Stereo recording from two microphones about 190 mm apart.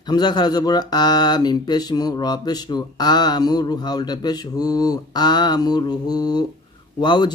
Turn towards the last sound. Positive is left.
turn(degrees=25)  # may be behind; listen again after turning